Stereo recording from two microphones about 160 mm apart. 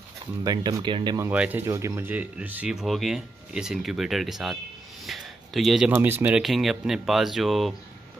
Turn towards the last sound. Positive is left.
turn(degrees=0)  # may be behind; listen again after turning